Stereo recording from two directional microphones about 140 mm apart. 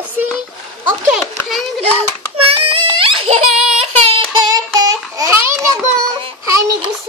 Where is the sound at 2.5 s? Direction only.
40° right (ahead or behind).